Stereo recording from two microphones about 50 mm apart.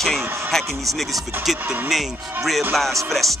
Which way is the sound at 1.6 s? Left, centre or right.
Right.